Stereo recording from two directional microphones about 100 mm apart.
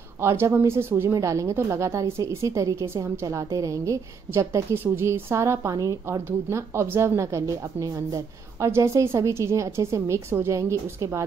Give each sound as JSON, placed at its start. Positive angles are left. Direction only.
{"t": 0.2, "sound": "a woman's voice", "side_deg": -25}